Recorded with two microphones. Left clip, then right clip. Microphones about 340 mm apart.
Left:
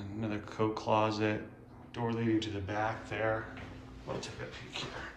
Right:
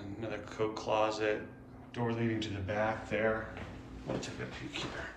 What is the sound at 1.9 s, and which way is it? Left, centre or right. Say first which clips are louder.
A man's voice: left 2 dB; centre.